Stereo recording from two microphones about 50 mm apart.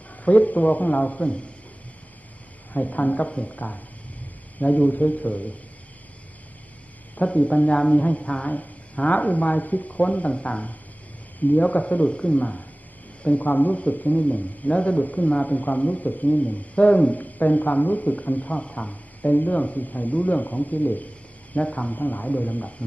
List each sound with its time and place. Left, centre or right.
0.2 s a man's voice: left
2.7 s a woman's voice: left
7.2 s a woman's voice: left